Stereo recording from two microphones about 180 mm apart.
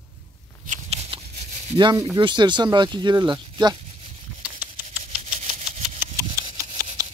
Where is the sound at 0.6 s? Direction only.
35° right (ahead or behind).